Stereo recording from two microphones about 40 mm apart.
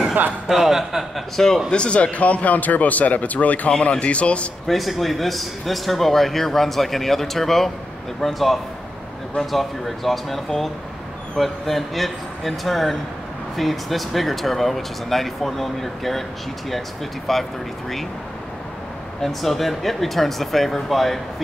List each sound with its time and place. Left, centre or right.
0.5 s speech: centre
1.3 s speech: centre
1.7 s speech: left
4.6 s speech: centre
17.3 s speech: centre
19.2 s speech: centre